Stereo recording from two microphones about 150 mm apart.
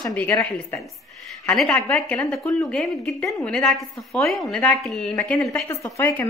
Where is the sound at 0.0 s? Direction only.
10° left (ahead or behind).